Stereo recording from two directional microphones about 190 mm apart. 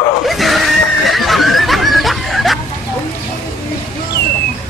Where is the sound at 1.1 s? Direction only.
Centre (ahead or behind).